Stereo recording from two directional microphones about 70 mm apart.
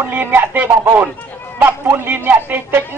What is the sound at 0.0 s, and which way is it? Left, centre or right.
Speech, right.